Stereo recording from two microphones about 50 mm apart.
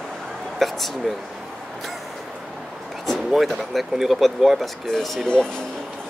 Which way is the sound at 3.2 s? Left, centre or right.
Centre.